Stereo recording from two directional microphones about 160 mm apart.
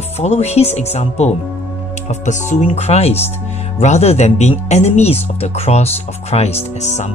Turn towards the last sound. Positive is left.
turn(degrees=45)  # may be behind; listen again after turning